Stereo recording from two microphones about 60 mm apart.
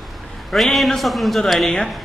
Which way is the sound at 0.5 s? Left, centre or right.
Centre.